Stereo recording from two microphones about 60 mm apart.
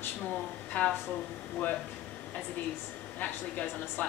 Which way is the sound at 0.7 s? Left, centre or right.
Left.